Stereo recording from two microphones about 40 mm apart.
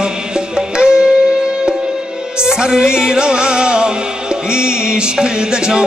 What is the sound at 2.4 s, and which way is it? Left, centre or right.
Music, centre.